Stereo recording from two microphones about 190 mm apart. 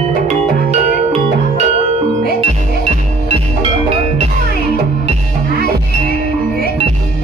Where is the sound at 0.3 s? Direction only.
35° right (ahead or behind).